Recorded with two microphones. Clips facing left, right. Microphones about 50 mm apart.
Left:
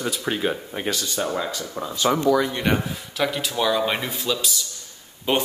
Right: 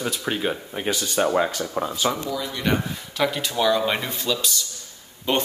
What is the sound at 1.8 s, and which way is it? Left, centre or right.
Speech, right.